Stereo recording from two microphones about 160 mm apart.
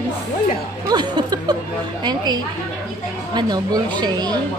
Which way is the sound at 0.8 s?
25° right (ahead or behind).